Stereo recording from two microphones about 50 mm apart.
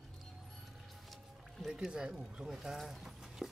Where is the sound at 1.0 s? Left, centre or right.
Centre.